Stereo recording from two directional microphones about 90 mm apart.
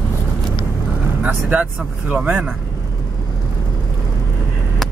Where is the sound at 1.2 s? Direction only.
15° right (ahead or behind).